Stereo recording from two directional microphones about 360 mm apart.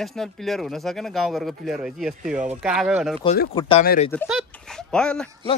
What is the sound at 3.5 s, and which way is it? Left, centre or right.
Speech, centre.